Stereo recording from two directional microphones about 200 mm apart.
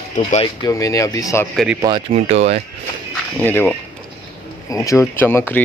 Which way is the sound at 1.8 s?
20° right (ahead or behind).